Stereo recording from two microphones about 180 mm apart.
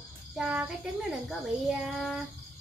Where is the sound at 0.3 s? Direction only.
5° right (ahead or behind).